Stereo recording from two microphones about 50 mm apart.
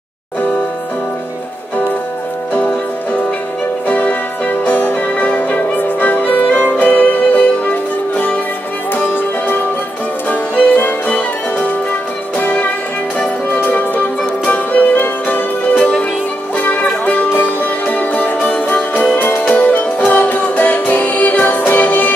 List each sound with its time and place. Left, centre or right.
3.8 s music: left
17.3 s music: left